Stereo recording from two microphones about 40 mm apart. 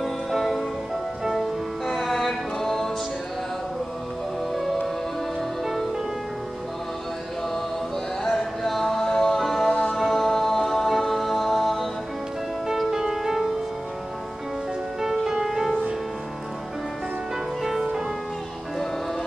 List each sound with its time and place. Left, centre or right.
0.3 s music: centre
1.9 s music: centre
4.6 s music: centre
8.2 s music: centre
9.7 s music: left
9.9 s music: centre
12.6 s music: centre
15.0 s music: centre
17.6 s music: centre